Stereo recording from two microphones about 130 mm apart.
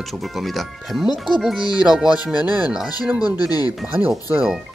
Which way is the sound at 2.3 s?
10° right (ahead or behind).